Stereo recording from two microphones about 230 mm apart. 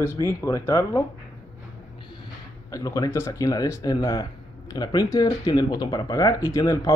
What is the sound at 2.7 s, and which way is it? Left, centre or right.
Speech, centre.